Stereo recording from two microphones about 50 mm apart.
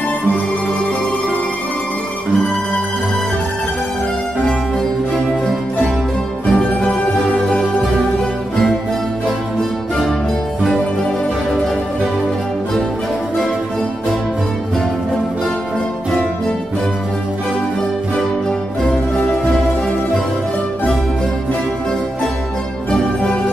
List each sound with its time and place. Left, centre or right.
2.3 s music: centre
6.5 s music: centre
7.2 s music: centre
9.6 s music: centre
18.9 s music: centre